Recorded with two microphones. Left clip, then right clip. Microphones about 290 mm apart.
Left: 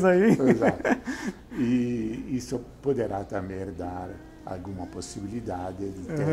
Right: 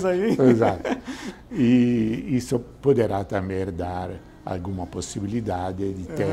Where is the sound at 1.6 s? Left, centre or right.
Right.